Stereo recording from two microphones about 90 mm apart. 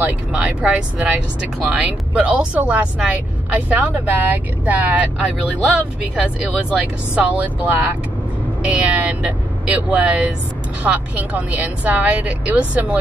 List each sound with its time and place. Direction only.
0.0 s speech: 15° right (ahead or behind)